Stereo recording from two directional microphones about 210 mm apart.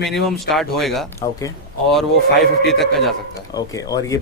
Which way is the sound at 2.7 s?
Centre (ahead or behind).